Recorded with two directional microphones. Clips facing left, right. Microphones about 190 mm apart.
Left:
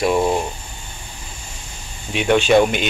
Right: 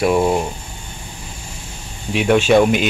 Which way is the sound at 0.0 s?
5° right (ahead or behind).